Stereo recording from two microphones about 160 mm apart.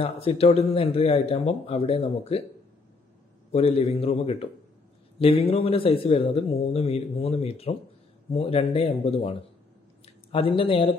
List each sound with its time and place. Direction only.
0.0 s a man's voice: 40° left (ahead or behind)
3.5 s a man's voice: 40° left (ahead or behind)